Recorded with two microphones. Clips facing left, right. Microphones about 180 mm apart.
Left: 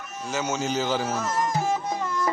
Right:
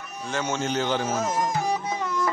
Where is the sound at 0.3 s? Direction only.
Centre (ahead or behind).